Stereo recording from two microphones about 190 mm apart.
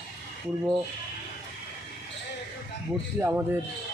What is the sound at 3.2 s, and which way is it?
Speech, 10° right (ahead or behind).